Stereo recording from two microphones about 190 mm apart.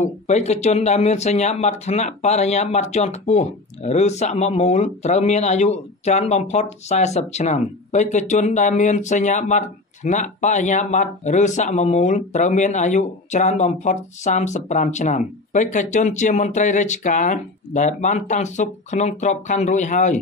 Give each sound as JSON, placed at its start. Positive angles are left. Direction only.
{"t": 0.0, "sound": "speech", "side_deg": 35}